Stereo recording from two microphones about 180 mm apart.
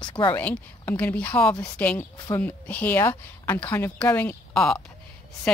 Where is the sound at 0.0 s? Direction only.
25° left (ahead or behind).